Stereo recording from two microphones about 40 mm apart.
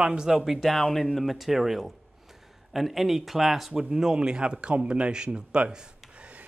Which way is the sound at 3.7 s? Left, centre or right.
Right.